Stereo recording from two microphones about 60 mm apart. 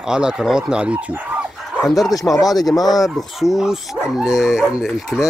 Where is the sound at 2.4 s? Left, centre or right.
Left.